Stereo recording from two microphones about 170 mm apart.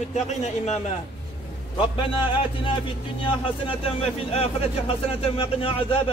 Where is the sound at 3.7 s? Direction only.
35° left (ahead or behind).